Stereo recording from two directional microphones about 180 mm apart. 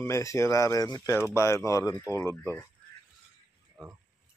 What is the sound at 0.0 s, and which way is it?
Speech, 15° left (ahead or behind).